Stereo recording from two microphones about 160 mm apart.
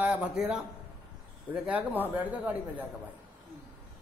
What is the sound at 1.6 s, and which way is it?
A man's voice, 10° right (ahead or behind).